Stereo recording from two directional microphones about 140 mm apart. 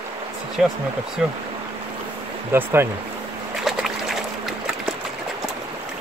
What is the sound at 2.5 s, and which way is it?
Speech, 15° right (ahead or behind).